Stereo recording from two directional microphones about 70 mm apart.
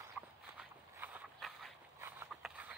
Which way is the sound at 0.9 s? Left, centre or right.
Right.